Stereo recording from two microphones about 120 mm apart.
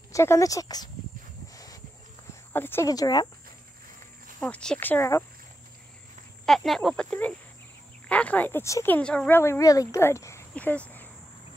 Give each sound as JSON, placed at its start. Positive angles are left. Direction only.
{"t": 0.1, "sound": "speech", "side_deg": 25}
{"t": 1.5, "sound": "a sound", "side_deg": 30}
{"t": 2.5, "sound": "speech", "side_deg": 20}
{"t": 2.9, "sound": "speech", "side_deg": 35}
{"t": 4.4, "sound": "speech", "side_deg": 10}
{"t": 6.4, "sound": "speech", "side_deg": 0}
{"t": 8.9, "sound": "speech", "side_deg": 10}
{"t": 9.4, "sound": "speech", "side_deg": 25}
{"t": 10.5, "sound": "a sound", "side_deg": 10}